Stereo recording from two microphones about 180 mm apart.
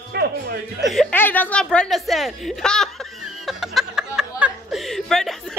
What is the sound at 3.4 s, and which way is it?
Chuckle, centre (ahead or behind).